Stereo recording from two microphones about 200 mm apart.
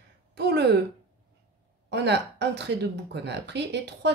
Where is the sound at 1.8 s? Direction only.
55° right (ahead or behind).